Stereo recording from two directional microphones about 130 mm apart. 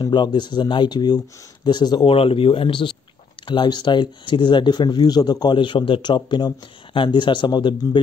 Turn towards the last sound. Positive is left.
turn(degrees=35)  # may be behind; listen again after turning